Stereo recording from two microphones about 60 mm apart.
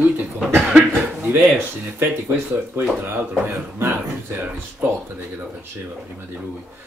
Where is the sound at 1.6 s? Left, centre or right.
Right.